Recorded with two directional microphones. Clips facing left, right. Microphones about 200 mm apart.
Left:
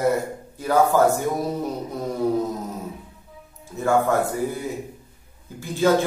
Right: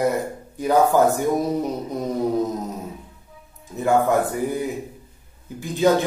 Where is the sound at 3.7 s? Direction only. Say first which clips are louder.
Right 1 dB; 15° right (ahead or behind).